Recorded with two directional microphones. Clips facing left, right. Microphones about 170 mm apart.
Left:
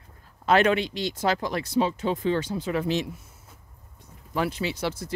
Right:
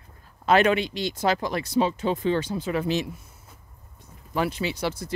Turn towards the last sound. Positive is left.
turn(degrees=-15)  # may be behind; listen again after turning